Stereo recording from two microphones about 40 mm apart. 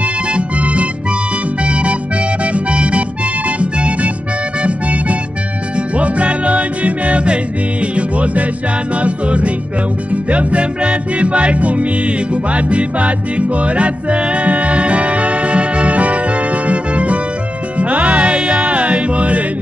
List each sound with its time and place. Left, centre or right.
0.0 s music: right